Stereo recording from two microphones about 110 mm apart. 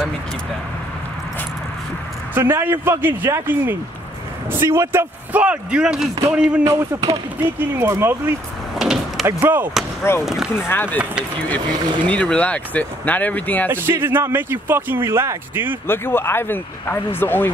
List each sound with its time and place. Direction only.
2.3 s speech: 20° right (ahead or behind)
6.6 s speech: 25° right (ahead or behind)
8.7 s door: centre (ahead or behind)
9.2 s speech: 20° right (ahead or behind)
10.2 s speech: 5° right (ahead or behind)
10.5 s speech: 20° left (ahead or behind)
12.1 s speech: 10° left (ahead or behind)
13.7 s speech: 20° right (ahead or behind)
15.9 s speech: 20° left (ahead or behind)